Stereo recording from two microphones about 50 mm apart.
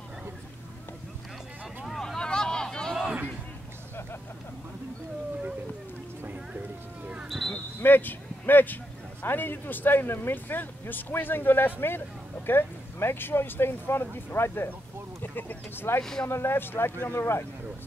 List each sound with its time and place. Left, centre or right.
1.9 s vehicle: centre
2.1 s a sound: centre
7.2 s basketball bounce: centre
7.8 s a sound: left
9.2 s speech: left
16.0 s speech: centre
16.3 s speech: left
16.5 s speech: left